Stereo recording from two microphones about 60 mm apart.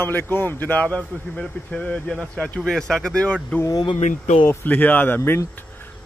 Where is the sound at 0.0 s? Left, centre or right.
Left.